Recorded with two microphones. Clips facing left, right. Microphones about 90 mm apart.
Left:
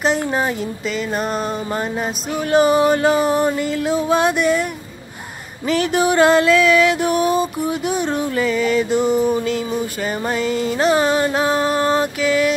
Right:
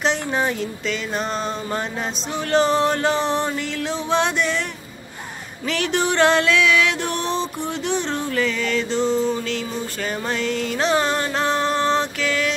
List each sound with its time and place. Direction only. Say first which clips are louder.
0.0 s speech: left 3 dB; 5° left (ahead or behind)
2.3 s music: left 4 dB; 10° left (ahead or behind)
5.7 s music: left 5 dB; 5° left (ahead or behind)